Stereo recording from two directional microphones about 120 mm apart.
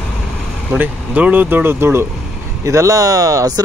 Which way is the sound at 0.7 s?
15° right (ahead or behind).